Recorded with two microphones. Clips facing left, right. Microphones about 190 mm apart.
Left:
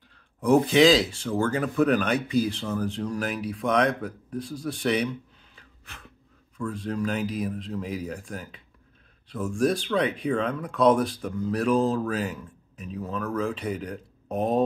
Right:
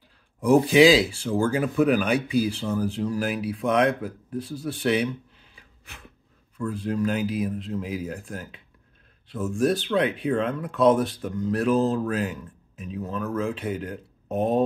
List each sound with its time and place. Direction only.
0.4 s speech: 10° right (ahead or behind)
5.6 s gasp: 10° right (ahead or behind)
6.6 s speech: 5° right (ahead or behind)